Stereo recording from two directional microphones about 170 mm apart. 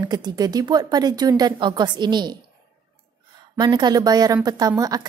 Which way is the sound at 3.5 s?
25° right (ahead or behind).